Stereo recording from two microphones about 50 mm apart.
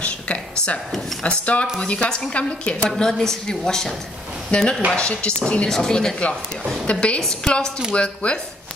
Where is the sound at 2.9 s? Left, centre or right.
Centre.